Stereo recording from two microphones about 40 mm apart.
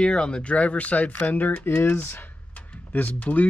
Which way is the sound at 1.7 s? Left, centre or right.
Left.